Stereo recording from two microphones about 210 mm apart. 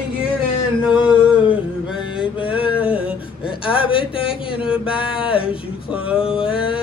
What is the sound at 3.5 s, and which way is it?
Speech, 25° left (ahead or behind).